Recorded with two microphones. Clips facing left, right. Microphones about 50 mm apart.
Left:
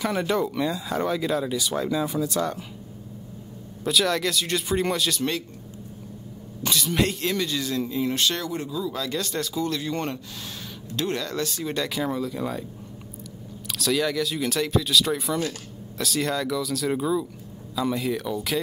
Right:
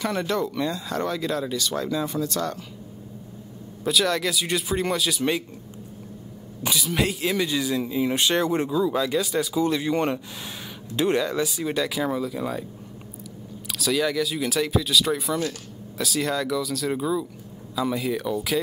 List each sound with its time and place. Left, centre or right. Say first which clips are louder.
0.0 s speech: left 1 dB; centre
3.8 s speech: even; centre
6.6 s speech: left 1 dB; centre
8.4 s speech: right 7 dB; right
9.0 s speech: right 4 dB; centre
13.7 s speech: even; centre